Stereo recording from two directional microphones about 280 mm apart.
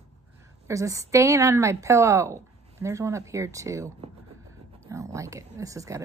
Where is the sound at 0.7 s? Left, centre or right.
Centre.